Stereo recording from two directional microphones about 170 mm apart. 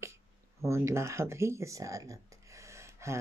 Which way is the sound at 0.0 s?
15° right (ahead or behind).